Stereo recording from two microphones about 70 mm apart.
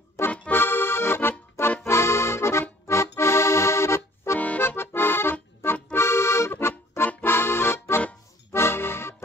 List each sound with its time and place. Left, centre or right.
0.5 s accordion: left
4.4 s accordion: left